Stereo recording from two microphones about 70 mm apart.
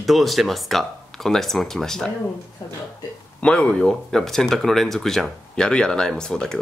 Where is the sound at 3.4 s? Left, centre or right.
Centre.